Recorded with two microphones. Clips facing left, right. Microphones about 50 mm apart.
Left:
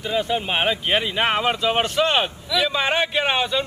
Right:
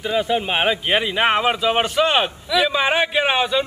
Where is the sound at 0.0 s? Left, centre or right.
Centre.